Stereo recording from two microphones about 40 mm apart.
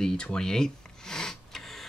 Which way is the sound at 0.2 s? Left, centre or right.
Centre.